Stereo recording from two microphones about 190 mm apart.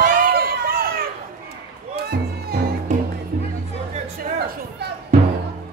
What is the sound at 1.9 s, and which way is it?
Music, 55° right (ahead or behind).